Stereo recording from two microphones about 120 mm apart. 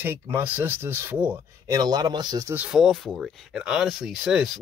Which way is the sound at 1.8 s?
35° right (ahead or behind).